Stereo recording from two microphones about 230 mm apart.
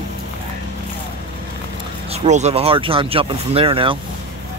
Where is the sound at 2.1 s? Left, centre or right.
Right.